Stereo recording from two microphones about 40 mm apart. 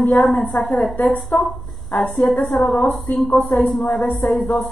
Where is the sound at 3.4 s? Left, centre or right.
Left.